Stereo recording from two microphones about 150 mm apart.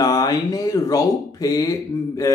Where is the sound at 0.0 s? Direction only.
25° left (ahead or behind).